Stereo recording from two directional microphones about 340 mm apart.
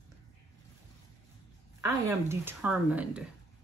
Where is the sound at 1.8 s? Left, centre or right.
Centre.